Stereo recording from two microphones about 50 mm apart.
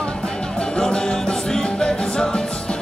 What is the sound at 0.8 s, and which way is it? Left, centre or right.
Music, centre.